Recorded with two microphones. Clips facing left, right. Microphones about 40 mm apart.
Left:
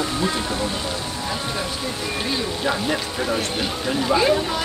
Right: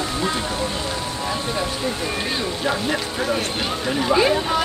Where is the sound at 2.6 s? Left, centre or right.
Centre.